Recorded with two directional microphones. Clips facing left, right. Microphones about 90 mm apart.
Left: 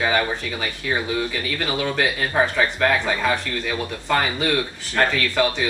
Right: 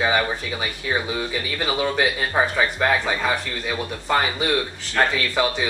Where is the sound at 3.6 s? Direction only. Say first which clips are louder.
Right 2 dB; 20° right (ahead or behind).